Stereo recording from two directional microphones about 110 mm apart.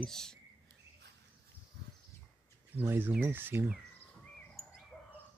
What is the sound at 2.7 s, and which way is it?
Speech, 20° right (ahead or behind).